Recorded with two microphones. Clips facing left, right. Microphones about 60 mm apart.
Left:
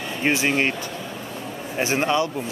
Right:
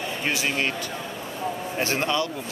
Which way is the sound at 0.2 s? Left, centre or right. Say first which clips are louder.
Left 6 dB; left.